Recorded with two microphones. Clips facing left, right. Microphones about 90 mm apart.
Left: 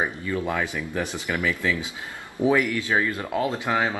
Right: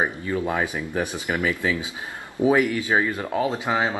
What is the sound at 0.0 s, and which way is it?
Speech, 25° right (ahead or behind).